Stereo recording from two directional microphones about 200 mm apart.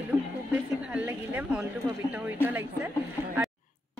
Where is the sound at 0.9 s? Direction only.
5° right (ahead or behind).